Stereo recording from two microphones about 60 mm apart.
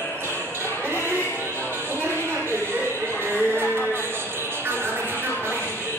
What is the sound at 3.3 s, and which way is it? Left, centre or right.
Music, left.